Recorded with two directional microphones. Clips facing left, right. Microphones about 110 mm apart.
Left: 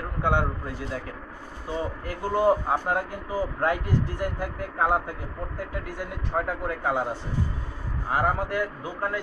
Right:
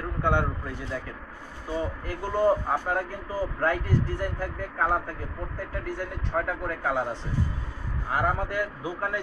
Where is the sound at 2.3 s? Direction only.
10° left (ahead or behind).